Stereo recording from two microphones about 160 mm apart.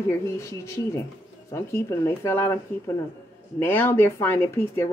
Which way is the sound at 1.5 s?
15° left (ahead or behind).